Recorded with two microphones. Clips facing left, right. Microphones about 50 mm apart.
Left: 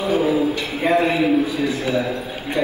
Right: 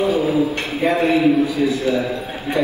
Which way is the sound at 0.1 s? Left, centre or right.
Left.